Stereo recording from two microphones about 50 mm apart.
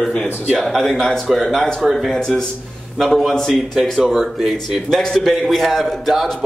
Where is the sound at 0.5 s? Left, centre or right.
Centre.